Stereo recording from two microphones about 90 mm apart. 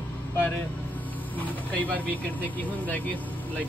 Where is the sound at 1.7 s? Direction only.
20° left (ahead or behind).